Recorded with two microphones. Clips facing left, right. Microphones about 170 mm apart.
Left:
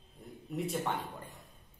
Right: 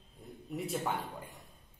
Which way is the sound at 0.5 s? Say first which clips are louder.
Left 1 dB; centre (ahead or behind).